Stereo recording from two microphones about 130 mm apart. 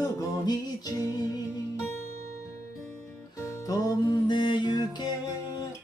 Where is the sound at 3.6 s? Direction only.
35° left (ahead or behind).